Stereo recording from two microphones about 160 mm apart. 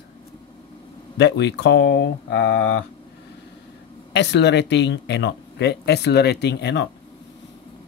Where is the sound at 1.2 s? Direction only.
90° left.